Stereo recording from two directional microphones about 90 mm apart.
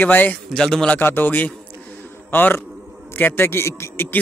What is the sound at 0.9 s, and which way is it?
A man's voice, 20° left (ahead or behind).